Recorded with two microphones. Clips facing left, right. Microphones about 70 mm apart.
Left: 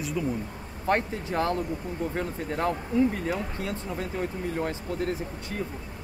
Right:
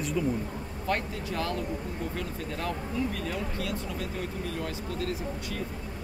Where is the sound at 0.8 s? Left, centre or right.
Left.